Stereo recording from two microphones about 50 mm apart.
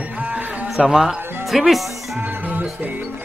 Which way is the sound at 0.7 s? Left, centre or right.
Centre.